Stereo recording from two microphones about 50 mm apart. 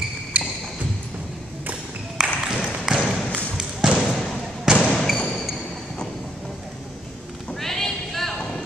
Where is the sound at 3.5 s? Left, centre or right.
Centre.